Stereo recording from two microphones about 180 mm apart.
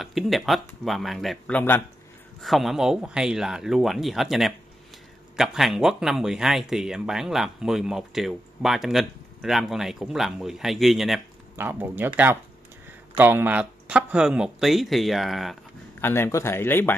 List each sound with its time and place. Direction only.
0.0 s speech: centre (ahead or behind)
16.0 s speech: 15° left (ahead or behind)